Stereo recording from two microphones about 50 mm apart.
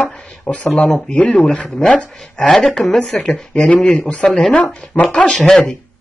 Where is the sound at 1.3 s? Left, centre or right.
Centre.